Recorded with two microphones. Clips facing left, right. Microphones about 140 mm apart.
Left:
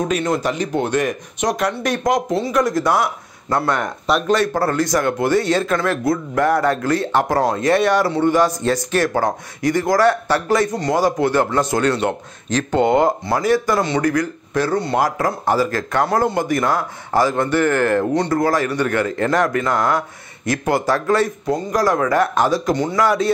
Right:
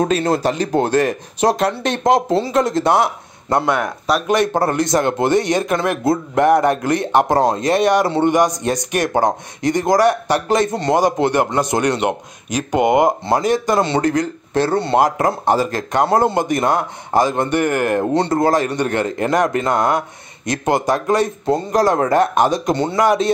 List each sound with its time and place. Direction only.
0.1 s speech: 30° right (ahead or behind)
3.6 s speech: 5° right (ahead or behind)
4.3 s a man's voice: 20° right (ahead or behind)